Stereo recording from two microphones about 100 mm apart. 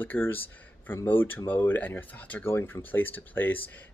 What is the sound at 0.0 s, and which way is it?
Speech, 20° left (ahead or behind).